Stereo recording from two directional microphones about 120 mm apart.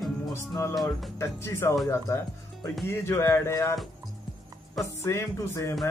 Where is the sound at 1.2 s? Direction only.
25° left (ahead or behind).